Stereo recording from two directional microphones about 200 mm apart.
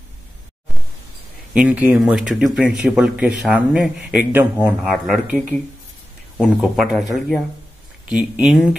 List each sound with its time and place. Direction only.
1.5 s speech: 5° right (ahead or behind)